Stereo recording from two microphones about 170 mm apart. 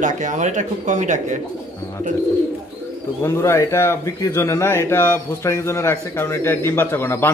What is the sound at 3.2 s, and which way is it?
Speech, 15° left (ahead or behind).